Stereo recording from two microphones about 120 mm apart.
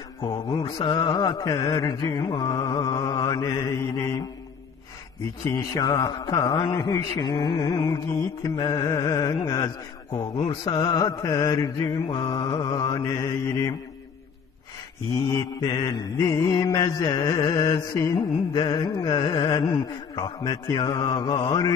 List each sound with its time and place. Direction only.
0.2 s mantra: 45° left (ahead or behind)
0.7 s a man's voice: 45° left (ahead or behind)
3.7 s mantra: 25° left (ahead or behind)
5.4 s a man's voice: 25° left (ahead or behind)
15.1 s mantra: 20° left (ahead or behind)
15.6 s a man's voice: 35° left (ahead or behind)